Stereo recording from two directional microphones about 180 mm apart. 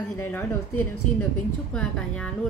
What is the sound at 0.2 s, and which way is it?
A woman's voice, 10° left (ahead or behind).